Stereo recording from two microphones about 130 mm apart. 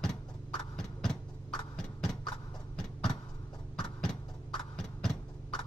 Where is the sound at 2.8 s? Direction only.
5° left (ahead or behind).